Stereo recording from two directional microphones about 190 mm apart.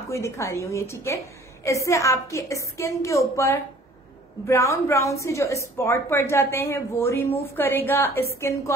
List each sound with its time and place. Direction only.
0.1 s a woman's voice: 15° left (ahead or behind)